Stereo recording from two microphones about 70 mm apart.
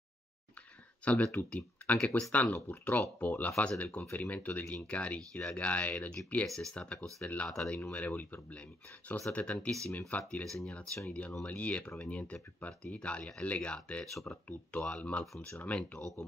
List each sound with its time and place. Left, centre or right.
1.0 s speech: centre
3.2 s speech: left
6.4 s speech: centre; by 10.4 s left
10.4 s speech: centre
11.1 s speech: centre